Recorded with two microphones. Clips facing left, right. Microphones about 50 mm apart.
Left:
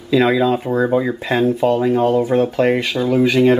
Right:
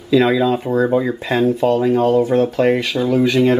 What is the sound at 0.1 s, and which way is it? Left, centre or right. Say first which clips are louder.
Speech: even; centre.